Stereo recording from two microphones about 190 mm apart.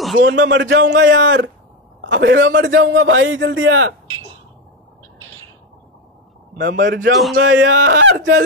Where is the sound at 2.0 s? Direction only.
70° right (ahead or behind); by 3.9 s 90° right.